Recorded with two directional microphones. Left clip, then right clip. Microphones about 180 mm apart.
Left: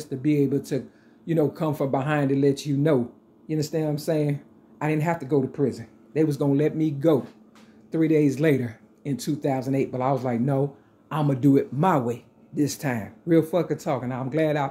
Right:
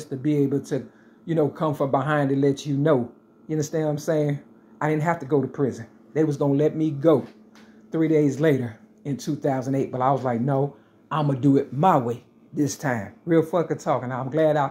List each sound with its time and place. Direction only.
0.0 s speech: 15° left (ahead or behind)
7.9 s speech: 15° left (ahead or behind)